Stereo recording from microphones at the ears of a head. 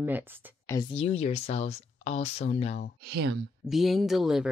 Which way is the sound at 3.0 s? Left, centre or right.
Right.